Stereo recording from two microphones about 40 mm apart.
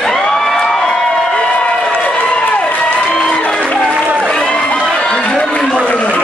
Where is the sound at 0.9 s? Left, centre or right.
Left.